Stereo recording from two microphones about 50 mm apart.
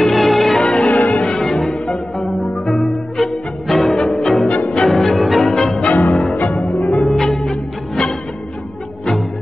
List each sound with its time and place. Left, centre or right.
0.0 s music: centre
4.5 s music: left
4.8 s music: centre
6.2 s music: left
6.8 s music: centre